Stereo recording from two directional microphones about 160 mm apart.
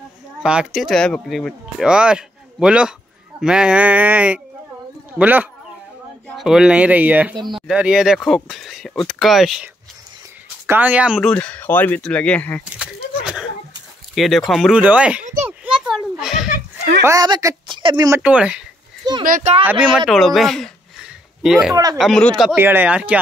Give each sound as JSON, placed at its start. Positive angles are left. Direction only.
{"t": 0.4, "sound": "speech", "side_deg": -5}
{"t": 10.7, "sound": "speech", "side_deg": -10}
{"t": 11.3, "sound": "speech", "side_deg": 10}
{"t": 12.7, "sound": "a sound", "side_deg": -5}
{"t": 14.1, "sound": "speech", "side_deg": 0}
{"t": 15.4, "sound": "children playing", "side_deg": -5}
{"t": 17.0, "sound": "speech", "side_deg": -20}
{"t": 18.2, "sound": "speech", "side_deg": -5}
{"t": 19.2, "sound": "speech", "side_deg": -55}
{"t": 19.6, "sound": "speech", "side_deg": -10}
{"t": 20.1, "sound": "a sound", "side_deg": 0}
{"t": 21.9, "sound": "speech", "side_deg": 0}
{"t": 22.6, "sound": "speech", "side_deg": -15}